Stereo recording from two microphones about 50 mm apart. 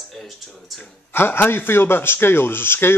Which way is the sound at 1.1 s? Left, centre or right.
Left.